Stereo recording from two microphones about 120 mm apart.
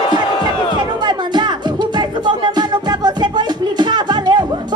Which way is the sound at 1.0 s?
40° right (ahead or behind).